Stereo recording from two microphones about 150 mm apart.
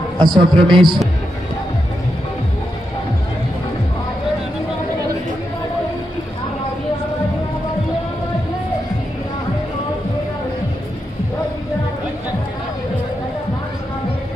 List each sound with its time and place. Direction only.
0.2 s a man's voice: 30° right (ahead or behind)